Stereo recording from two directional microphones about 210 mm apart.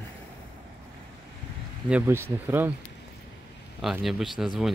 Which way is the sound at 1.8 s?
10° right (ahead or behind).